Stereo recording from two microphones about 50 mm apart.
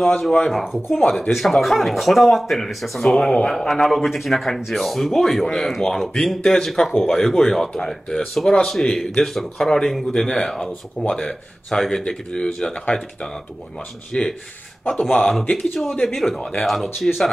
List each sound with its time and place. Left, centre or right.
0.0 s speech: centre
0.9 s speech: centre
3.1 s speech: centre
3.5 s speech: centre
15.6 s speech: centre
16.3 s speech: centre
16.6 s speech: centre